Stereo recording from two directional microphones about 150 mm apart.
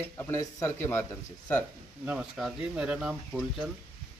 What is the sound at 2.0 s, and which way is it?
Speech, 5° right (ahead or behind).